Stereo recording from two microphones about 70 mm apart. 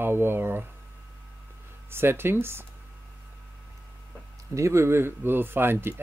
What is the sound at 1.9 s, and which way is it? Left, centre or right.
Speech, right.